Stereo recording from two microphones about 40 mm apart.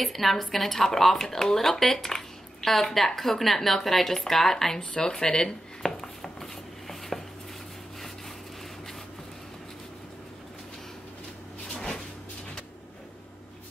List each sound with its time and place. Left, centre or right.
0.0 s speech: centre
4.7 s speech: centre
5.1 s a sound: centre
11.7 s cupboard open or close: centre